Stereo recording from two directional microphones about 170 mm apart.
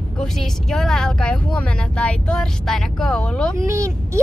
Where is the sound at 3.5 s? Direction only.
20° right (ahead or behind).